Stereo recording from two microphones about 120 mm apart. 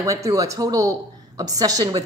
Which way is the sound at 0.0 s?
25° right (ahead or behind).